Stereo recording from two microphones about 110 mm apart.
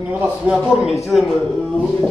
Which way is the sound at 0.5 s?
5° right (ahead or behind).